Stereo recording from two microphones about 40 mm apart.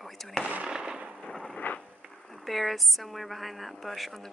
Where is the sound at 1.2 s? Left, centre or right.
Centre.